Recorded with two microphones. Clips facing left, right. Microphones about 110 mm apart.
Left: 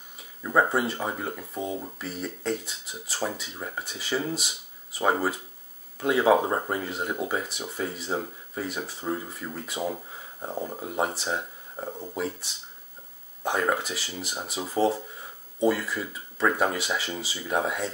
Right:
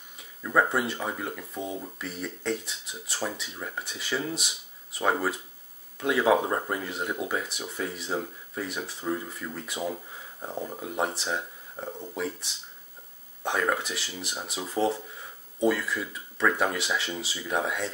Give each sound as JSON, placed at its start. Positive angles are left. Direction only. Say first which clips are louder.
{"t": 0.4, "sound": "a sound", "louder": "left 1 dB", "side_deg": 15}
{"t": 0.7, "sound": "speech", "louder": "left 2 dB", "side_deg": 0}
{"t": 0.9, "sound": "speech", "louder": "left 2 dB", "side_deg": 15}
{"t": 1.4, "sound": "speech", "louder": "left 2 dB", "side_deg": 0}
{"t": 3.5, "sound": "speech", "louder": "left 1 dB", "side_deg": 10}
{"t": 3.8, "sound": "speech", "louder": "left 2 dB", "side_deg": 0}
{"t": 13.4, "sound": "speech", "louder": "left 1 dB", "side_deg": 5}